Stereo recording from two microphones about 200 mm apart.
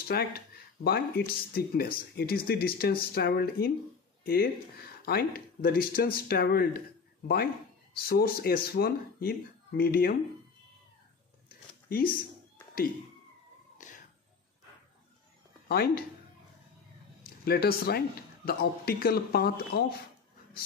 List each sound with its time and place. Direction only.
0.1 s speech: 50° left (ahead or behind)
8.0 s speech: 50° left (ahead or behind)
11.4 s a sound: 45° left (ahead or behind)
13.7 s a sound: 40° left (ahead or behind)
15.7 s speech: 50° left (ahead or behind)
17.2 s speech: 50° left (ahead or behind)